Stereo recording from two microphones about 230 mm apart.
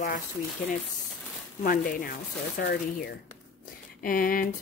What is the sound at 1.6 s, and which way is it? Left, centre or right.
Speech, left.